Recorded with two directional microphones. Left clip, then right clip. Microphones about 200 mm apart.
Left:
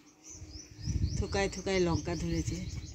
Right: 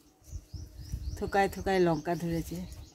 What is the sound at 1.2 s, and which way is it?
Speech, 40° right (ahead or behind).